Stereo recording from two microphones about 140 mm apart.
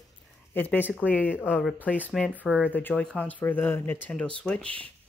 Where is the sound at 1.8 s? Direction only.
10° left (ahead or behind).